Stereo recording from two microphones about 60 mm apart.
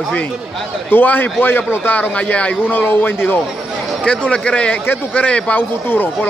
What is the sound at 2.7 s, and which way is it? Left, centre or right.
Speech, left.